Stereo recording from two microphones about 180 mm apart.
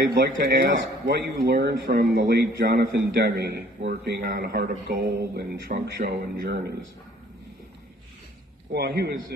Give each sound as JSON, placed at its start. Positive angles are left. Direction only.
{"t": 0.0, "sound": "speech", "side_deg": -70}
{"t": 8.7, "sound": "speech", "side_deg": -65}